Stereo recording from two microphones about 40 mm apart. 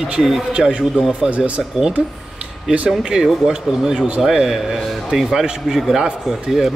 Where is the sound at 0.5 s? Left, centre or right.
Centre.